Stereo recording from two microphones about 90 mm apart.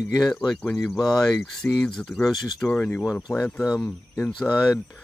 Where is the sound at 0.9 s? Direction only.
45° left (ahead or behind).